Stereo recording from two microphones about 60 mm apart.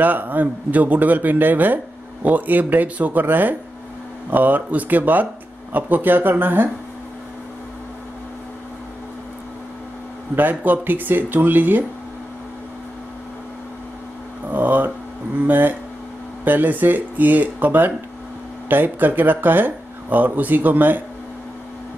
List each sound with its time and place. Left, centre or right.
0.0 s speech: right
10.3 s speech: right
14.5 s speech: right